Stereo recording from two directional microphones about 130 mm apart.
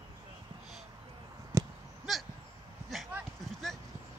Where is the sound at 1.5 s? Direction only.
25° right (ahead or behind).